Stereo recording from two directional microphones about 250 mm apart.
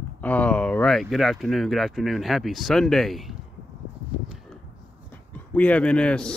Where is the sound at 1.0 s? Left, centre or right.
Centre.